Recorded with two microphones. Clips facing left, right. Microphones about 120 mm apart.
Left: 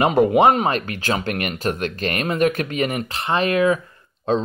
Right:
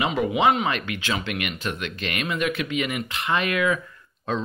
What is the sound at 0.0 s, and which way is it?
Speech, 45° left (ahead or behind).